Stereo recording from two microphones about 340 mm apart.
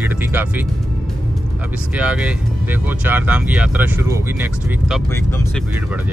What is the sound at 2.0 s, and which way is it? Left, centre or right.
Speech, centre.